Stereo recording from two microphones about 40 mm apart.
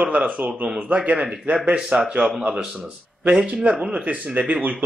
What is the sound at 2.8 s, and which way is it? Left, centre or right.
Speech, right.